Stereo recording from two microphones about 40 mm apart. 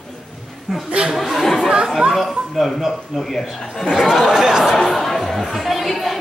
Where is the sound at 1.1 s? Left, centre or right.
Centre.